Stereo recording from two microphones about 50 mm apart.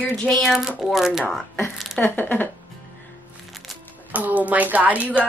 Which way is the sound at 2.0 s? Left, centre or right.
Left.